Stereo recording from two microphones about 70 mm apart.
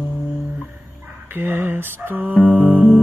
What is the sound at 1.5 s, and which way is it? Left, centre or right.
Speech, right.